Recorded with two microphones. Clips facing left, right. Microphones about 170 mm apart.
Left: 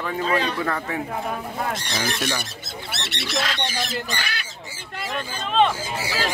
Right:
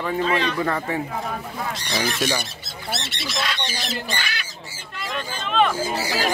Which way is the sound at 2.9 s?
65° left (ahead or behind).